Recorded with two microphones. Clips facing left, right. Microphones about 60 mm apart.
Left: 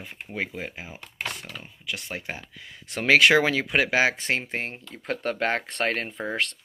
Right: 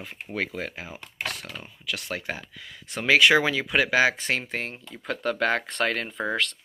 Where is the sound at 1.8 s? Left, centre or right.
Centre.